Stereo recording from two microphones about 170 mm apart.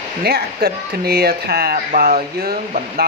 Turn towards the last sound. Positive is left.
turn(degrees=-60)  # may be behind; listen again after turning